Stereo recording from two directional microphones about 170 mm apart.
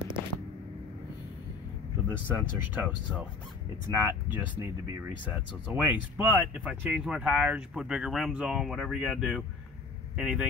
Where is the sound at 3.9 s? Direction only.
15° right (ahead or behind).